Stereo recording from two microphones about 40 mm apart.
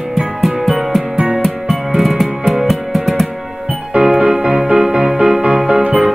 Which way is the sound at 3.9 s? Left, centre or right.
Right.